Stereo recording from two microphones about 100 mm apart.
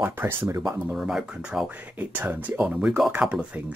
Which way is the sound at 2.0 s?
20° right (ahead or behind).